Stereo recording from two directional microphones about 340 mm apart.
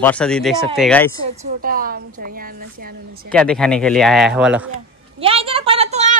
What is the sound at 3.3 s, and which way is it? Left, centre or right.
A man's voice, centre.